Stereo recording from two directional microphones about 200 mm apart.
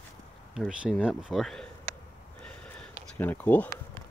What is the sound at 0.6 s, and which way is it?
Speech, centre (ahead or behind).